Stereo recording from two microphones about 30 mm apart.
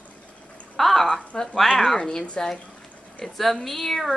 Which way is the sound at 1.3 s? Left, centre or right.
Centre.